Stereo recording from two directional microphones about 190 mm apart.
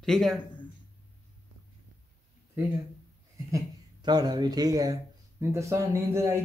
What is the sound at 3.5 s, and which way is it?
Speech, 20° right (ahead or behind).